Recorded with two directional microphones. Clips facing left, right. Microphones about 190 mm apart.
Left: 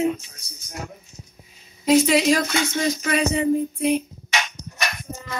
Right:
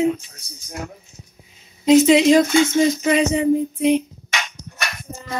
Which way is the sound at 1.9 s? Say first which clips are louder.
Right 5 dB; 20° right (ahead or behind).